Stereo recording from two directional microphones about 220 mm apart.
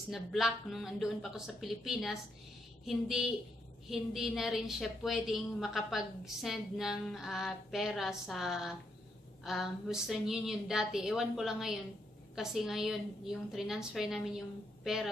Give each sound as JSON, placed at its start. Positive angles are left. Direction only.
{"t": 0.1, "sound": "a woman's voice", "side_deg": 0}